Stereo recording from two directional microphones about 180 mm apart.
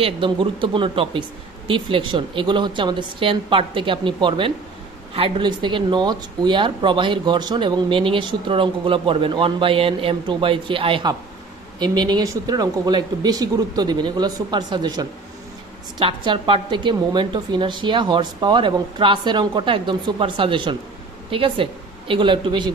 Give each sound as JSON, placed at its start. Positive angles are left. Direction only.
{"t": 0.0, "sound": "speech", "side_deg": -30}